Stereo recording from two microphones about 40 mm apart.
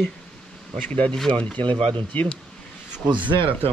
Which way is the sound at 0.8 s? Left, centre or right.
Left.